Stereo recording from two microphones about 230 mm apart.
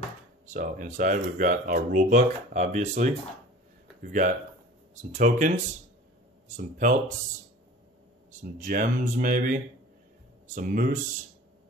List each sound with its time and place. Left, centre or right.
0.5 s speech: right
6.5 s speech: right
8.5 s speech: right